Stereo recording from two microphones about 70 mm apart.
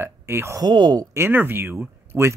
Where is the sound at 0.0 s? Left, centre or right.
Right.